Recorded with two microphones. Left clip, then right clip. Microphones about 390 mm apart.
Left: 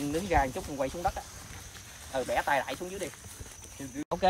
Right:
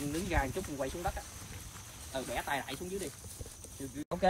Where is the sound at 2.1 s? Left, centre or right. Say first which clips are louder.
Left 8 dB; centre.